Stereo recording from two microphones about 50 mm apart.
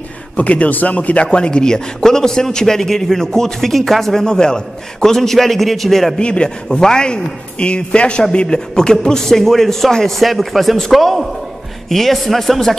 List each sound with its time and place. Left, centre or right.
0.4 s speech: left; by 6.1 s centre
6.1 s a man's voice: centre